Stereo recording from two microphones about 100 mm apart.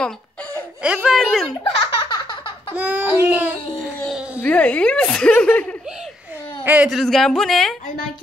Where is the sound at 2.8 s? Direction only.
15° right (ahead or behind).